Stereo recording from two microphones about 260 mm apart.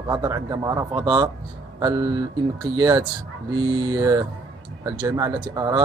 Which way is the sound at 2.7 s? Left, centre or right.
Centre.